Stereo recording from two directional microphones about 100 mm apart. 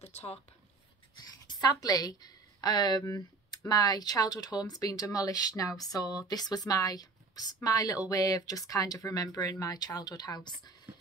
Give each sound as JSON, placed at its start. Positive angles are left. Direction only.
{"t": 0.0, "sound": "speech", "side_deg": 90}
{"t": 1.5, "sound": "a woman's voice", "side_deg": 40}